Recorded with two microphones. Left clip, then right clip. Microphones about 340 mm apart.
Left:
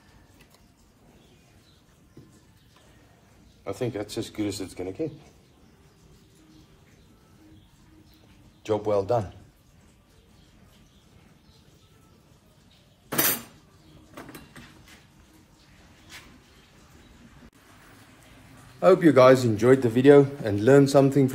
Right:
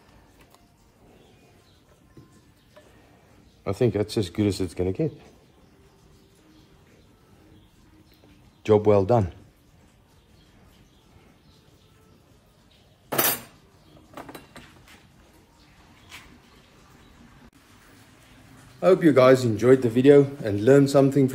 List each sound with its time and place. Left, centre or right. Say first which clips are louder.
3.6 s speech: right 7 dB; right
8.6 s speech: right 6 dB; right
18.8 s a man's voice: left 1 dB; centre